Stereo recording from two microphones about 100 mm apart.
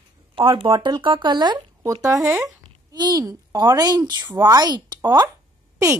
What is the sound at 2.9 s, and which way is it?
A woman's voice, 45° right (ahead or behind).